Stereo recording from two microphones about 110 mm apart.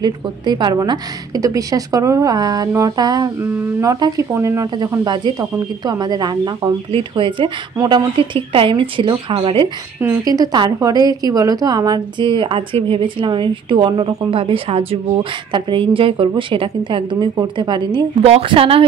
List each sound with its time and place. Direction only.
0.0 s a woman's voice: 40° right (ahead or behind)
6.9 s a woman's voice: 50° right (ahead or behind)
10.0 s a woman's voice: 35° right (ahead or behind); by 15.0 s 60° right (ahead or behind)
15.5 s a woman's voice: 50° right (ahead or behind)
18.2 s a woman's voice: 60° right (ahead or behind)